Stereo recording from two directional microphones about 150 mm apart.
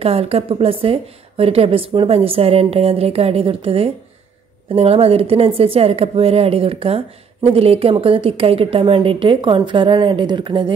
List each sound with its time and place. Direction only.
0.0 s a woman's voice: 40° right (ahead or behind)